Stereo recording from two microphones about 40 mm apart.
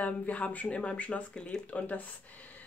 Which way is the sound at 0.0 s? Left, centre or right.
Left.